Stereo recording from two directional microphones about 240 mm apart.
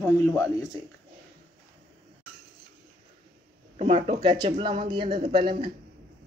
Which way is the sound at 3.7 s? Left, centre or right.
Right.